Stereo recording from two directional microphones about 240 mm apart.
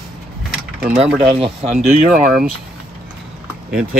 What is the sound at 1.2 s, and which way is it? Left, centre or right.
Speech, right.